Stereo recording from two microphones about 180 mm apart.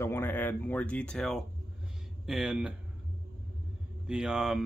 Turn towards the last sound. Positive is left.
turn(degrees=0)  # may be behind; listen again after turning